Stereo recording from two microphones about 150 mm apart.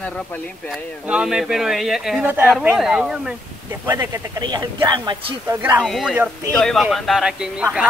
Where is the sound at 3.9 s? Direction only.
25° right (ahead or behind).